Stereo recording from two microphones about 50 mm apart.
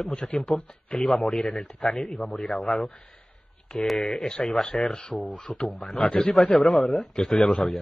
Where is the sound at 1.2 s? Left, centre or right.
Centre.